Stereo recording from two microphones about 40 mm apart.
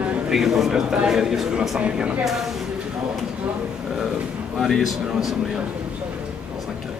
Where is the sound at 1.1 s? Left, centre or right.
Centre.